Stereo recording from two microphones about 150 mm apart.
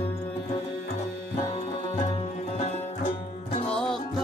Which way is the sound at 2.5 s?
50° left (ahead or behind).